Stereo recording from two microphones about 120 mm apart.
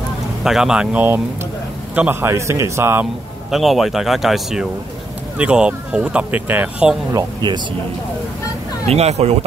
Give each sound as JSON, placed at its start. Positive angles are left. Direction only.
{"t": 0.4, "sound": "a man's voice", "side_deg": -5}
{"t": 3.4, "sound": "a man's voice", "side_deg": 0}
{"t": 7.1, "sound": "speech", "side_deg": -30}
{"t": 8.8, "sound": "speech", "side_deg": -65}